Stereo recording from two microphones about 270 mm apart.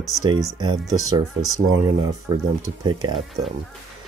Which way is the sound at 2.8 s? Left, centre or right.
Centre.